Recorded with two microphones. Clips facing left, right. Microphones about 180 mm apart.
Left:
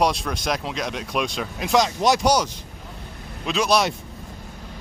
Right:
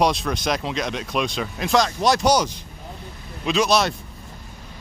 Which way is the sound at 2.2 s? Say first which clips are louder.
Right 1 dB; 5° left (ahead or behind).